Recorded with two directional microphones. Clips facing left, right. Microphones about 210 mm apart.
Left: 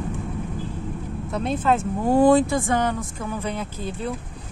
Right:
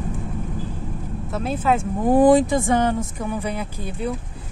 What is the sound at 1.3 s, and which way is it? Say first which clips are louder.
Speech: even; 5° right (ahead or behind).